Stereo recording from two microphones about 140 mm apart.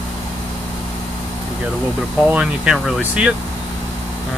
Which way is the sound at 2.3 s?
5° right (ahead or behind).